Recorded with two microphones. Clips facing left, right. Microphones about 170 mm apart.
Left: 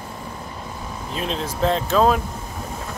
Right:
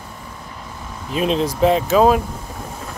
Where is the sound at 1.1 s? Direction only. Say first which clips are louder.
Right 8 dB; 15° right (ahead or behind).